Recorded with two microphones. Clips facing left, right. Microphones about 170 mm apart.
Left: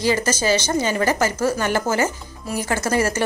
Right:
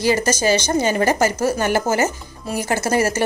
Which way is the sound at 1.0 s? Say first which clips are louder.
Right 2 dB; 45° right (ahead or behind).